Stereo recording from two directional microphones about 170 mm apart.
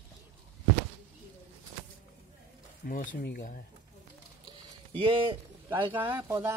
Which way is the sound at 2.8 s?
60° left (ahead or behind).